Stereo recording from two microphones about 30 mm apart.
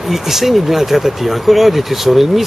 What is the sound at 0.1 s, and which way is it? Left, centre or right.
Speech, centre.